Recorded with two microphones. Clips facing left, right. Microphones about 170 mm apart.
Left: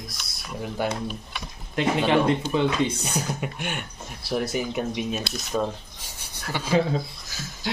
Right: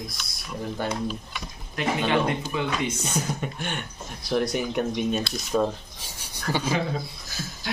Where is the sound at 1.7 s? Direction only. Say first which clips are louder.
Left 3 dB; 25° left (ahead or behind).